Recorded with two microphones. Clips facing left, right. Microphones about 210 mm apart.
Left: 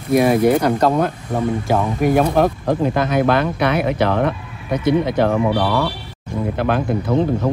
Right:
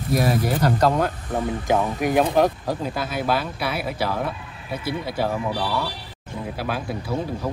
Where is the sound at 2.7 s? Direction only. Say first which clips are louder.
Left 9 dB; 55° left (ahead or behind).